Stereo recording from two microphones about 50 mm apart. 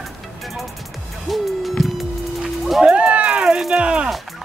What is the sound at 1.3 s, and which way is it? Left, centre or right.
Music, centre.